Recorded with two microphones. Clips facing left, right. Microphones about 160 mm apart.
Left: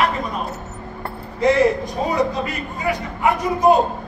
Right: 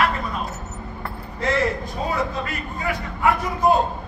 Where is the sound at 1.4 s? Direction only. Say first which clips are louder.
Left 7 dB; 15° left (ahead or behind).